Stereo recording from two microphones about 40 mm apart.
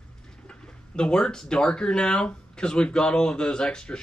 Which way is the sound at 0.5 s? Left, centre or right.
Left.